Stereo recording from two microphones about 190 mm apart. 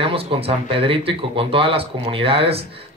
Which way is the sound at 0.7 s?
30° right (ahead or behind).